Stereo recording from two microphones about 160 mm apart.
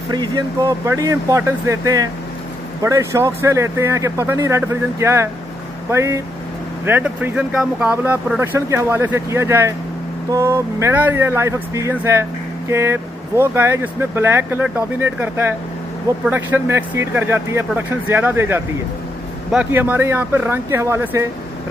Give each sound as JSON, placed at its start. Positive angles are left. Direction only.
{"t": 0.1, "sound": "speech", "side_deg": -25}